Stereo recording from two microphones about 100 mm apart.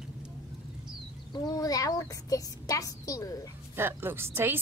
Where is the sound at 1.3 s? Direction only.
40° left (ahead or behind).